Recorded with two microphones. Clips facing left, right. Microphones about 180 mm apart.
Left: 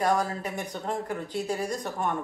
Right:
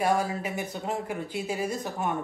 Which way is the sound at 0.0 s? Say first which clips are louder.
Even; 10° right (ahead or behind).